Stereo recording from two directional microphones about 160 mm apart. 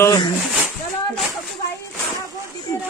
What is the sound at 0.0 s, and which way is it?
Speech, 25° left (ahead or behind).